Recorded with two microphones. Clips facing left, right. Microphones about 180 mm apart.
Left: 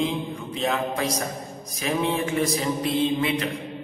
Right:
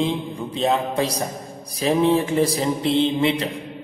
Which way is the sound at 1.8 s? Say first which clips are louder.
Right 6 dB; 30° right (ahead or behind).